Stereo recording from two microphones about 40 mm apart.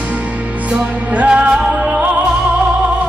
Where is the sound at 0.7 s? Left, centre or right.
Right.